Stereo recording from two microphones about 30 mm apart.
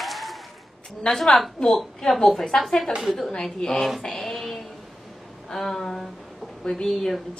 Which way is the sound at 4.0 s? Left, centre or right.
Centre.